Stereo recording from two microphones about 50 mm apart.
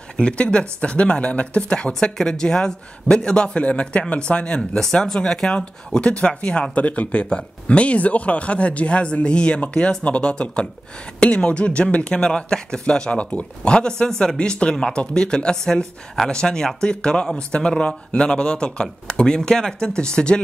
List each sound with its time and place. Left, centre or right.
0.2 s speech: left
4.6 s speech: centre